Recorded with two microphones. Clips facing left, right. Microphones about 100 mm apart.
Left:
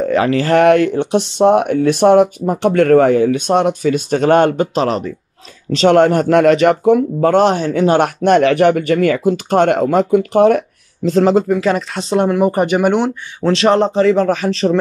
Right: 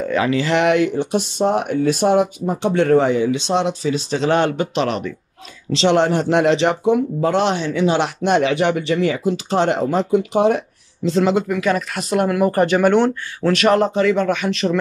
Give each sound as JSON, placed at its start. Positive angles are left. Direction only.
{"t": 0.0, "sound": "speech", "side_deg": 35}
{"t": 11.1, "sound": "speech", "side_deg": 40}
{"t": 13.5, "sound": "speech", "side_deg": 30}